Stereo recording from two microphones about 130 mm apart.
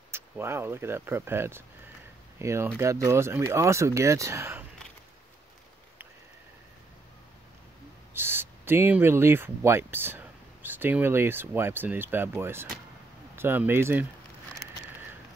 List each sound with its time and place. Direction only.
0.1 s speech: 20° right (ahead or behind)
8.1 s speech: 15° right (ahead or behind)